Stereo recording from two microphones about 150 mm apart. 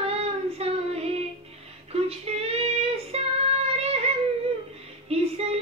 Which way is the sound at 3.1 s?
45° right (ahead or behind).